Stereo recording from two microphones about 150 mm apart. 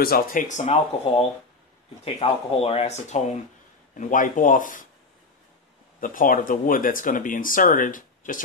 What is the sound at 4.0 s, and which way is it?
Speech, 60° left (ahead or behind).